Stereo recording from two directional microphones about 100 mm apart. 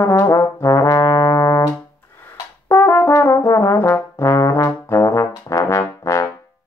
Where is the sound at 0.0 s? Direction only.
30° left (ahead or behind).